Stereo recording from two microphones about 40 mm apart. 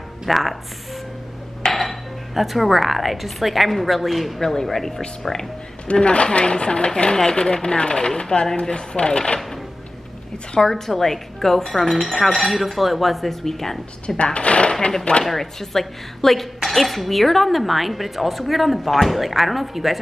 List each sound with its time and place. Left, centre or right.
0.3 s speech: centre
1.7 s dishes: centre
4.4 s speech: centre
5.9 s speech: left
10.7 s speech: centre
14.0 s speech: left
15.2 s speech: centre